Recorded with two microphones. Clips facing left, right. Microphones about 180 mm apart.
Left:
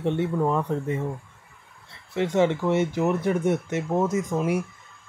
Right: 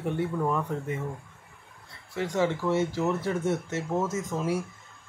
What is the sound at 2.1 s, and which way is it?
Speech, 20° left (ahead or behind).